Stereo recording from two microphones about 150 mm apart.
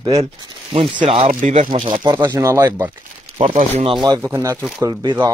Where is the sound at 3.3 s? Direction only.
40° right (ahead or behind).